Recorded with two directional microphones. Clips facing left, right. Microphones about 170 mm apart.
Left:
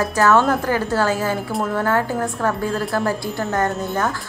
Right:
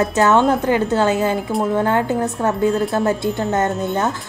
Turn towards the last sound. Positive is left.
turn(degrees=-20)  # may be behind; listen again after turning